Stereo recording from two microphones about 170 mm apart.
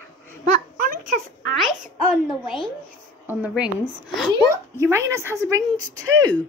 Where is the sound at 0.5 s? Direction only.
55° right (ahead or behind).